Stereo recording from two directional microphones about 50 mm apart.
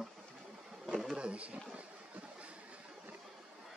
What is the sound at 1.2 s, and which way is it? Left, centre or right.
Speech, right.